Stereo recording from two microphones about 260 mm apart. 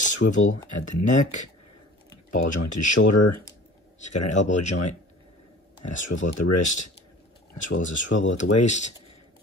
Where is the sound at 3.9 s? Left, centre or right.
Left.